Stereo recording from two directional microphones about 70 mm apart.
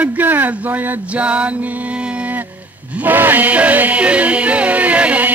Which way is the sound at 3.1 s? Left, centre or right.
Right.